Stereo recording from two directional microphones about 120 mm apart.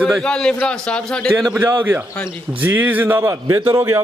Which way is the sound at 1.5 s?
15° right (ahead or behind).